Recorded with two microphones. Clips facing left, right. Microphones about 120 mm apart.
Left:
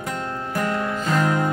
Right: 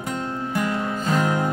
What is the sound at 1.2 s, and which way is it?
Music, 10° right (ahead or behind).